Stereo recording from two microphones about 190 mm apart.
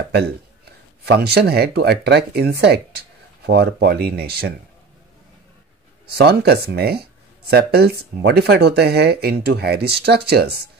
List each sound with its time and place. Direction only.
0.0 s speech: 60° right (ahead or behind)
6.0 s speech: 55° right (ahead or behind)